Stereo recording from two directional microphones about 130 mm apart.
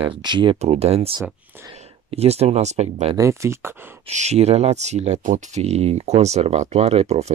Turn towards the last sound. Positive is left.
turn(degrees=-55)  # may be behind; listen again after turning